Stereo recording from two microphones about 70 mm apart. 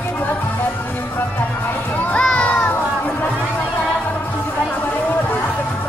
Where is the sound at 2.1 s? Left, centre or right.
Centre.